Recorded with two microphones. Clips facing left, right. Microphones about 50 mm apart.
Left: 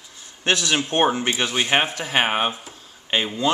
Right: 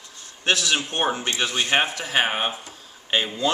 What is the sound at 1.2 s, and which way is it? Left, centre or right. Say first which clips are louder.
Speech: left 2 dB; centre.